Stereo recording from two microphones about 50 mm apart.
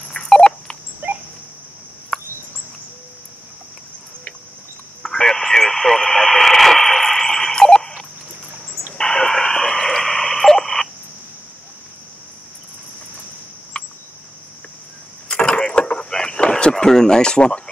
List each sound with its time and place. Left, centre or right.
0.1 s telephone dialing: centre
1.0 s dog: right
5.0 s radio: centre
8.9 s radio: centre
13.7 s cricket: left
15.2 s vehicle: left
16.7 s a sound: centre